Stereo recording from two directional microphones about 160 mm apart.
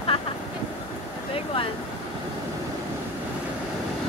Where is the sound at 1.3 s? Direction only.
35° left (ahead or behind).